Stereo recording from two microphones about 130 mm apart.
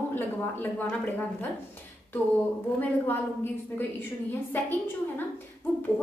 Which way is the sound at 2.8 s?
15° left (ahead or behind).